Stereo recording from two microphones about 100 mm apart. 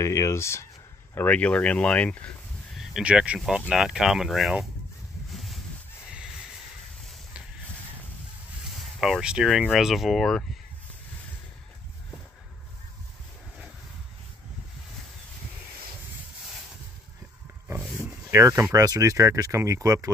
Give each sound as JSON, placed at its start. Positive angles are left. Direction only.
{"t": 0.0, "sound": "speech", "side_deg": 30}
{"t": 1.1, "sound": "speech", "side_deg": 15}
{"t": 2.7, "sound": "speech", "side_deg": -5}
{"t": 5.3, "sound": "a sound", "side_deg": 0}
{"t": 8.7, "sound": "speech", "side_deg": 0}
{"t": 18.3, "sound": "speech", "side_deg": -30}